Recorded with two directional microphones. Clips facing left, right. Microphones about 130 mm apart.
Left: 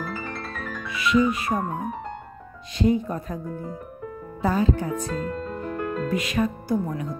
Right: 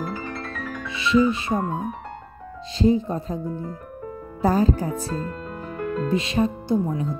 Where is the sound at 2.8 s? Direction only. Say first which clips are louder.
Right 2 dB; 30° right (ahead or behind).